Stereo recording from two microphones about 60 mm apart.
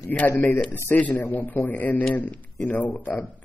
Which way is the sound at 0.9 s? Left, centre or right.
Left.